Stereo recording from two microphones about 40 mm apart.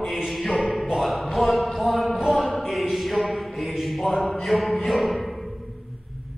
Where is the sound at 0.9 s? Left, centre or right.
Centre.